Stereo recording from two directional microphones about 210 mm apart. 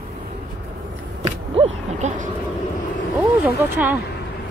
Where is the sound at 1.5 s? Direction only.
30° right (ahead or behind).